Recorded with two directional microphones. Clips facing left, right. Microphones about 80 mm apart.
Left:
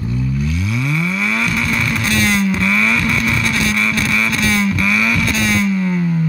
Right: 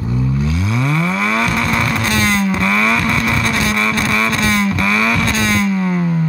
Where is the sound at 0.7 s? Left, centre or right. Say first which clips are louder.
Right 3 dB; right.